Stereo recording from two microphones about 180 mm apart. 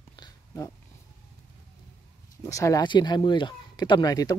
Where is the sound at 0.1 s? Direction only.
25° left (ahead or behind).